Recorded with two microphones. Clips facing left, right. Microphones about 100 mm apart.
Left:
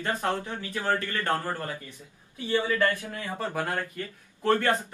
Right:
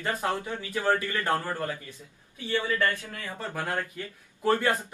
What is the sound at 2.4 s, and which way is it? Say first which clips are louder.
A man's voice: left 2 dB; 20° left (ahead or behind).